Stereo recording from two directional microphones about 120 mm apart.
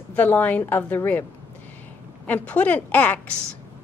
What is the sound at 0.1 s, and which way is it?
A woman's voice, 15° left (ahead or behind).